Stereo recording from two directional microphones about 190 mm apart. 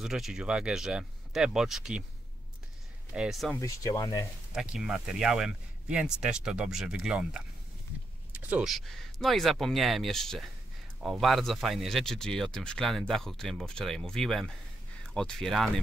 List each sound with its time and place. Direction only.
0.0 s speech: centre (ahead or behind)
3.1 s speech: 5° right (ahead or behind)
3.5 s speech: 15° left (ahead or behind)
4.6 s speech: centre (ahead or behind)